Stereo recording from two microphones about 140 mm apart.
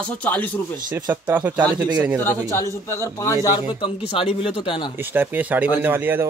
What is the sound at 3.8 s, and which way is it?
Speech, 40° left (ahead or behind).